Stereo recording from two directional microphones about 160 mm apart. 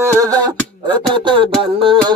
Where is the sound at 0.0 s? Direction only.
20° right (ahead or behind).